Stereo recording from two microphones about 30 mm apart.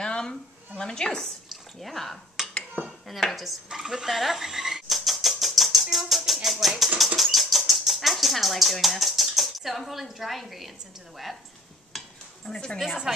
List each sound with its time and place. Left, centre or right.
0.0 s a sound: left
1.8 s dishes: centre
2.4 s finger snapping: centre
3.1 s dishes: centre
4.1 s a sound: centre
6.6 s speech: centre
7.2 s bird flight: centre
12.4 s speech: left
12.8 s speech: centre